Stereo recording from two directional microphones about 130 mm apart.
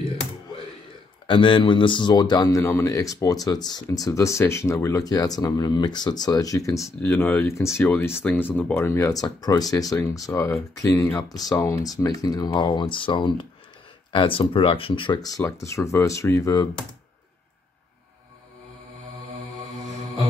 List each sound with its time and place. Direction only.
1.2 s speech: 40° left (ahead or behind)